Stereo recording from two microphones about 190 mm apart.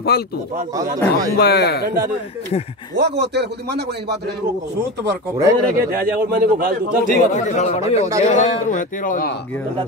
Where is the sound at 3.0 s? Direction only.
60° right (ahead or behind).